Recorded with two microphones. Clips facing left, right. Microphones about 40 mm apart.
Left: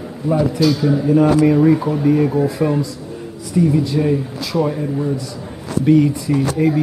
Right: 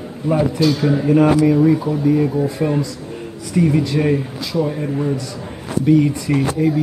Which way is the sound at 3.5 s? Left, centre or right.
Right.